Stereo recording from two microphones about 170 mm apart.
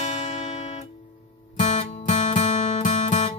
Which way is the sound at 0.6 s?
40° left (ahead or behind).